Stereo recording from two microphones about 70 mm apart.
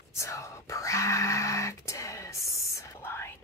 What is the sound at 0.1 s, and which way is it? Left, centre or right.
Whispering, left.